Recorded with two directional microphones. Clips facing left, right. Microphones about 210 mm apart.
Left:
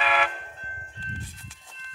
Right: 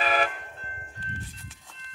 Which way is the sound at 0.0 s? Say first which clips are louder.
Right 1 dB; 40° right (ahead or behind).